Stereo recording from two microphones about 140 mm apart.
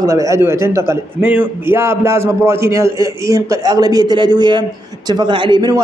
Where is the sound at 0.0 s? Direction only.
25° right (ahead or behind).